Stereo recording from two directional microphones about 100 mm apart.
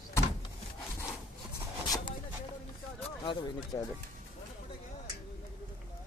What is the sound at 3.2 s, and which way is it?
Speech, 55° left (ahead or behind).